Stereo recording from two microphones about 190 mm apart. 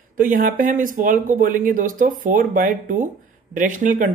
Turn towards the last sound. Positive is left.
turn(degrees=-45)  # may be behind; listen again after turning